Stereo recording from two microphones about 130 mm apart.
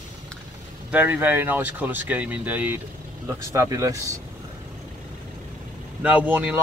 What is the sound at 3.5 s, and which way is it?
Speech, 25° right (ahead or behind).